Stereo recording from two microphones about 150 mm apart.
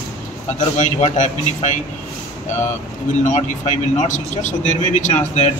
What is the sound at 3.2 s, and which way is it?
A man's voice, 50° left (ahead or behind).